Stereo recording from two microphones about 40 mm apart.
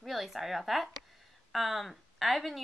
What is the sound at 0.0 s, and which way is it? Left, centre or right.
Speech, centre.